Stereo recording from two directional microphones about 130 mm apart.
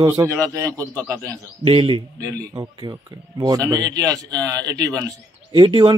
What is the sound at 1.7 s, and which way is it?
Speech, 40° right (ahead or behind).